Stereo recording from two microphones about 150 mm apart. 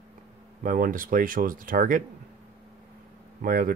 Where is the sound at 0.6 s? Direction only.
65° right (ahead or behind).